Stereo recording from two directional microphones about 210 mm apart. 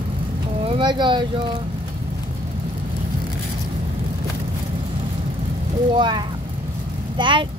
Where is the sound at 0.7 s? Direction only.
20° right (ahead or behind).